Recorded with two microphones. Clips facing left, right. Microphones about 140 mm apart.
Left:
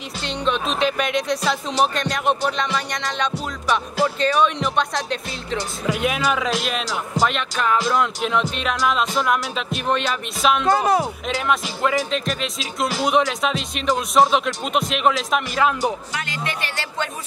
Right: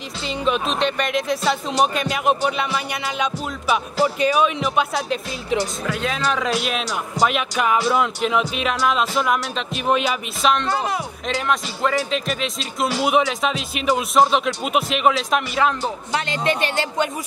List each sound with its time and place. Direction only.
0.2 s speech: 5° right (ahead or behind)
5.9 s a man's voice: 15° left (ahead or behind)
6.4 s speech: centre (ahead or behind)
10.7 s speech: 40° left (ahead or behind)
11.2 s speech: centre (ahead or behind)
16.1 s speech: 25° right (ahead or behind)